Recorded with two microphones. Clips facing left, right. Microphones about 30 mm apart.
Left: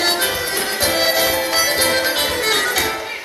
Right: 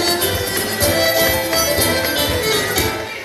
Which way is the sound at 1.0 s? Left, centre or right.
Centre.